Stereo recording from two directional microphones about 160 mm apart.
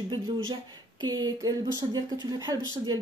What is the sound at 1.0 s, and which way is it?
Speech, 25° right (ahead or behind).